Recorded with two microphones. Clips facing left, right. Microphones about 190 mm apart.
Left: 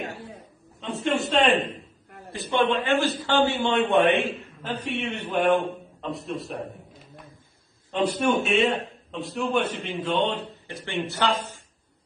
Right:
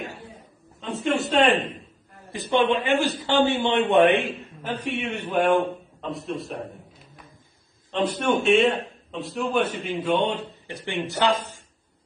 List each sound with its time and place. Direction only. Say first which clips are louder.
0.9 s a man's voice: right 2 dB; 5° right (ahead or behind)
2.3 s a man's voice: right 2 dB; 15° right (ahead or behind); by 6.6 s centre (ahead or behind)
7.9 s a man's voice: even; 5° left (ahead or behind); by 11.3 s 15° right (ahead or behind)